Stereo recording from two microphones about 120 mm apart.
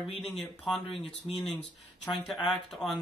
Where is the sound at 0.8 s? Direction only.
50° left (ahead or behind).